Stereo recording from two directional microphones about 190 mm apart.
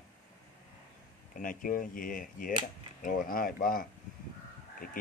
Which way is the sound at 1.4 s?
45° left (ahead or behind).